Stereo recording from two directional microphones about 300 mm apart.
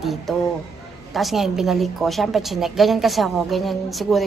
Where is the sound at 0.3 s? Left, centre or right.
Centre.